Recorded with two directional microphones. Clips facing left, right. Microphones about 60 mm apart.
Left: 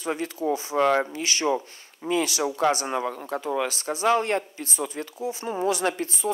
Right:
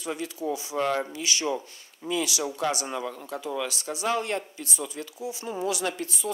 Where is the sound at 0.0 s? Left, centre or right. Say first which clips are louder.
Left 4 dB; left.